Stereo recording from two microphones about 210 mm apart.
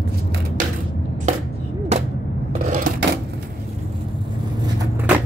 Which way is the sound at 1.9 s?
30° right (ahead or behind).